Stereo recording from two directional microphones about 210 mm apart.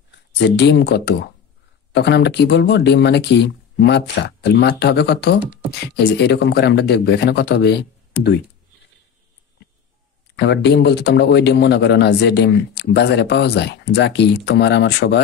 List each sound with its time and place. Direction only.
0.1 s speech: 55° left (ahead or behind)
10.4 s speech: 55° left (ahead or behind)